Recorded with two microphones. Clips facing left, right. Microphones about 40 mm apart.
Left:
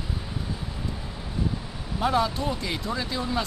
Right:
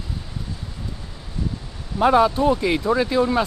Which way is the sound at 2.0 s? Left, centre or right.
Right.